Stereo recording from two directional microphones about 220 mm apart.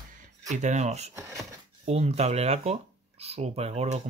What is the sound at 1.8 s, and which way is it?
Speech, 30° right (ahead or behind).